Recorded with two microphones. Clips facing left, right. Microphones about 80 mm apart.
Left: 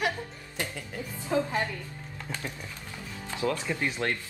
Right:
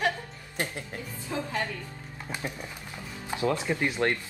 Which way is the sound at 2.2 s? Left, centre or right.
Right.